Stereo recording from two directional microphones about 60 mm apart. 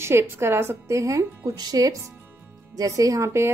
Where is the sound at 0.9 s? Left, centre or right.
Right.